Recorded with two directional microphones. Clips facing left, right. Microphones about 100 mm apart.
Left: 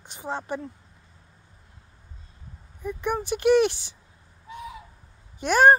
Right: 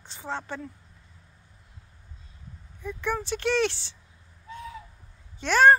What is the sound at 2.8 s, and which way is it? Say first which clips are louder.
Speech: left 2 dB; 15° left (ahead or behind).